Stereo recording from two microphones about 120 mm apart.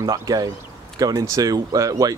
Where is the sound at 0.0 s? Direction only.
30° right (ahead or behind).